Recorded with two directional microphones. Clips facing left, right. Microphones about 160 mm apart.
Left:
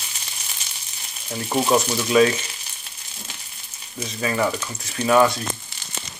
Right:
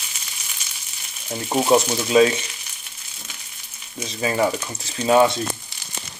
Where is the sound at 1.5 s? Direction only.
20° right (ahead or behind).